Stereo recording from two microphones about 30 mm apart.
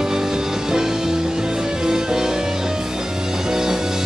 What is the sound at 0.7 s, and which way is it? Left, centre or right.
Music, centre.